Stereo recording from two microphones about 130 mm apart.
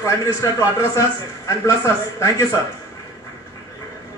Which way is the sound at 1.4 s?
25° left (ahead or behind).